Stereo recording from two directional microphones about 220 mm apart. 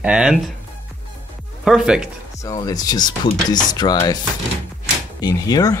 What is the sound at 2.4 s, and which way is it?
Speech, 15° left (ahead or behind).